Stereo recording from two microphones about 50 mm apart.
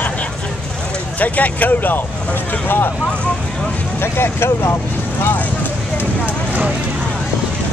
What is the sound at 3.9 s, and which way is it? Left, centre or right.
Speech, left.